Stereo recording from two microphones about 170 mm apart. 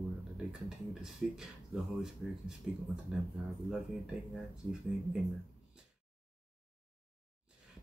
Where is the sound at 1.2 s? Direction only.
5° right (ahead or behind).